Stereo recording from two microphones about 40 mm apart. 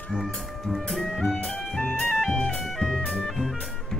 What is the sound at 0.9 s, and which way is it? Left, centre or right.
Music, centre.